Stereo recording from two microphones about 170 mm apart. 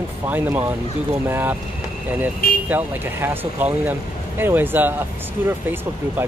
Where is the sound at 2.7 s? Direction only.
10° right (ahead or behind).